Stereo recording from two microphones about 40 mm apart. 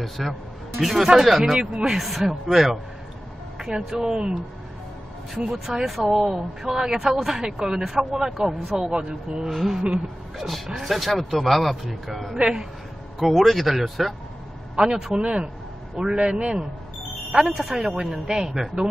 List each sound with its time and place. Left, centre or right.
0.0 s speech: centre
1.0 s a man's voice: centre
1.7 s a man's voice: right
2.0 s a man's voice: centre; by 4.4 s right
5.3 s a man's voice: centre
8.7 s a man's voice: centre
9.5 s speech: centre
9.8 s a man's voice: centre
10.3 s speech: centre
12.4 s a man's voice: centre
13.2 s speech: centre
14.9 s a man's voice: centre